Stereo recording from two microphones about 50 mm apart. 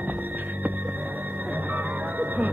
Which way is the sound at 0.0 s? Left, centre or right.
Right.